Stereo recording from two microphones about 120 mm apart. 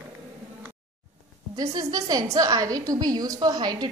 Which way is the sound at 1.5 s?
30° right (ahead or behind).